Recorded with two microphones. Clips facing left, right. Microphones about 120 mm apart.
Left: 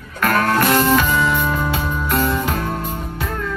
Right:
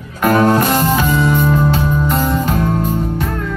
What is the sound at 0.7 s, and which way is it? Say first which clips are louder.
Music: even; 35° right (ahead or behind).